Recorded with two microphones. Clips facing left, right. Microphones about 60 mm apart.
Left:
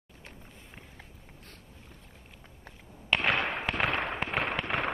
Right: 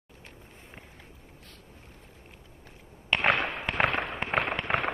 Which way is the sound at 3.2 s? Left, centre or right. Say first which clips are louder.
Right 4 dB; right.